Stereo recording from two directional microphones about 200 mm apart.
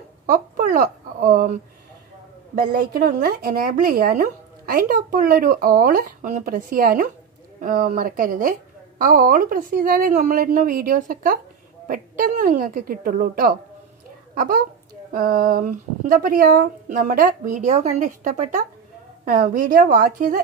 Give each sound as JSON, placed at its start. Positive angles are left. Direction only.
{"t": 0.3, "sound": "a child's voice", "side_deg": -40}